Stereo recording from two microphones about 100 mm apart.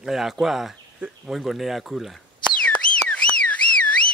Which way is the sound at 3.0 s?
10° left (ahead or behind).